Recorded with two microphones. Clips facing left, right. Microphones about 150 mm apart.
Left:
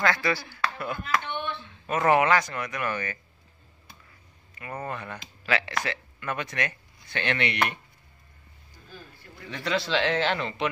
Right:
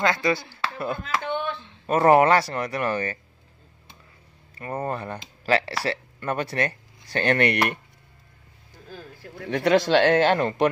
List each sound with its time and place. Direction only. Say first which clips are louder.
0.0 s speech: right 3 dB; 20° right (ahead or behind)
4.6 s speech: right 6 dB; 35° right (ahead or behind)
8.9 s speech: right 7 dB; 90° right
9.5 s speech: right 9 dB; 55° right (ahead or behind)